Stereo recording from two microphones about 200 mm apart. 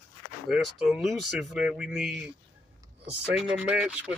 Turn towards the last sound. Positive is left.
turn(degrees=-5)  # may be behind; listen again after turning